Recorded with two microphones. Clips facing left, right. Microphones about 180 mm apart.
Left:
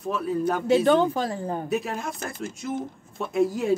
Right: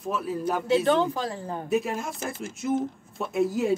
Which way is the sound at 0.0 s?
Centre (ahead or behind).